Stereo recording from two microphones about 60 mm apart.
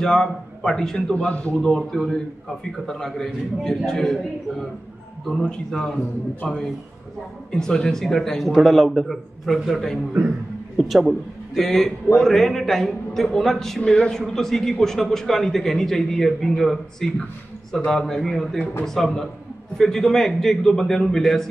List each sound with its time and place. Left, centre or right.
0.0 s a man's voice: centre
1.1 s a man's voice: left
1.6 s a man's voice: centre